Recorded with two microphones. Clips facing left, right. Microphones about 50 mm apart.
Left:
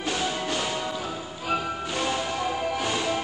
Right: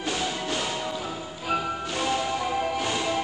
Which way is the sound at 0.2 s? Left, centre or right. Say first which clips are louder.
Left 1 dB; centre.